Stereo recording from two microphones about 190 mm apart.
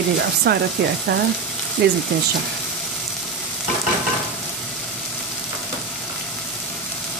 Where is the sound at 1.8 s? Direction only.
60° right (ahead or behind).